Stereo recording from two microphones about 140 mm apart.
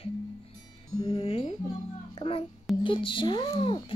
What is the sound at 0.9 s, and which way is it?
Speech, 25° left (ahead or behind).